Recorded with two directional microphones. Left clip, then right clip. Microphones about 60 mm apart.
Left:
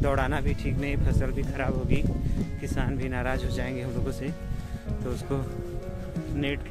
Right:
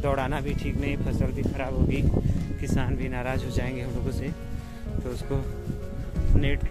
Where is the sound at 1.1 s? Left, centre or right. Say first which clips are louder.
Right 1 dB; left.